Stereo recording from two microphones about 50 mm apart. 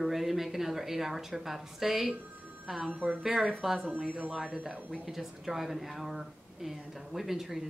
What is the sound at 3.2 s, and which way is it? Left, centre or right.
Speech, centre.